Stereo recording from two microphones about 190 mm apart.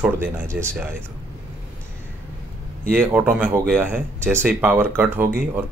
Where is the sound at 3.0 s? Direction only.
5° right (ahead or behind).